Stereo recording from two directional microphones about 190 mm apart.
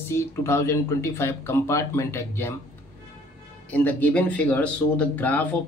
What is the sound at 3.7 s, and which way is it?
Speech, 10° left (ahead or behind).